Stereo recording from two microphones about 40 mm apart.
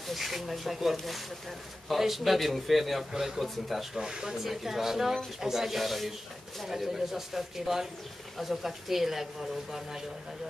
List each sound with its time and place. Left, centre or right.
0.1 s a man's voice: centre
4.0 s speech: centre
4.4 s a man's voice: centre